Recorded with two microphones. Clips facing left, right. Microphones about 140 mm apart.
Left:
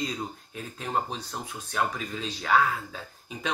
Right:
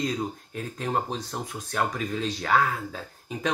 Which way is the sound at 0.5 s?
45° right (ahead or behind).